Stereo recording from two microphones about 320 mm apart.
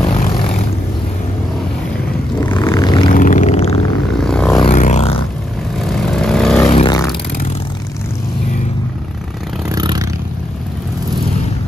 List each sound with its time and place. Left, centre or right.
2.4 s vehicle: centre
3.1 s vehicle: left
4.2 s vehicle: centre
4.6 s a sound: left
5.9 s vehicle: centre
6.7 s vehicle: centre
9.7 s vehicle: centre